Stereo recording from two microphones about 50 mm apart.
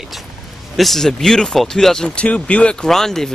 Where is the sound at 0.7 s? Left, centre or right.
Centre.